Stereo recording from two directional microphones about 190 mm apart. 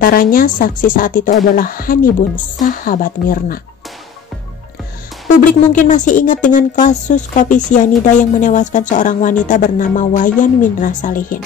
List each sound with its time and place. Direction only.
0.0 s speech: 50° left (ahead or behind)
5.4 s speech: 45° left (ahead or behind)